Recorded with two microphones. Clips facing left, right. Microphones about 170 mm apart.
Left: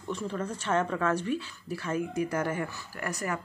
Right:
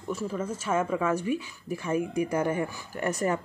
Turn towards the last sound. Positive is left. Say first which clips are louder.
# right 6 dB
turn(degrees=-25)  # may be behind; listen again after turning